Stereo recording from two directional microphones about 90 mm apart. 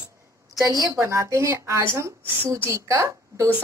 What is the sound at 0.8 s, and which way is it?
A woman's voice, 35° right (ahead or behind).